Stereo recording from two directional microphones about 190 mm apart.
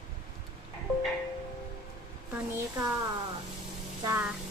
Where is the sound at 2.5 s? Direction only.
15° right (ahead or behind).